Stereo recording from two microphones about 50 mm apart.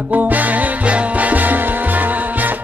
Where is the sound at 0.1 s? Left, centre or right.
Right.